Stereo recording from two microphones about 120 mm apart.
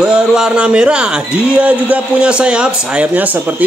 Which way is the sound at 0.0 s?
5° right (ahead or behind).